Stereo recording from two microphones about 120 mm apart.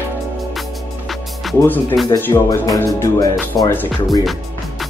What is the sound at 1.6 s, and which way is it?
Speech, 15° left (ahead or behind).